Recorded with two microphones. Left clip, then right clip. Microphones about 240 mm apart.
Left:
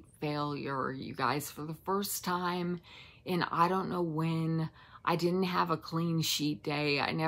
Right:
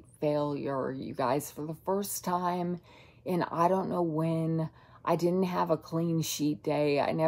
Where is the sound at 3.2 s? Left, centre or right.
Left.